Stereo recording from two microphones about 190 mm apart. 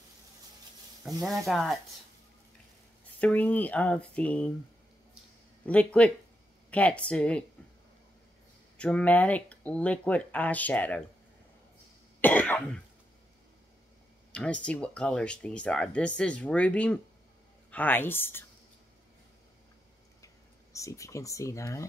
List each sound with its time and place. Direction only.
1.0 s speech: centre (ahead or behind)
3.2 s speech: 10° left (ahead or behind)
5.7 s speech: 5° left (ahead or behind)
8.7 s speech: 5° left (ahead or behind)
12.2 s cough: 10° left (ahead or behind)
14.3 s speech: 5° left (ahead or behind)
20.7 s speech: 15° left (ahead or behind)